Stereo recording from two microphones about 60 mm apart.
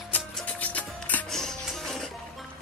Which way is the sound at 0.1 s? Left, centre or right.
Left.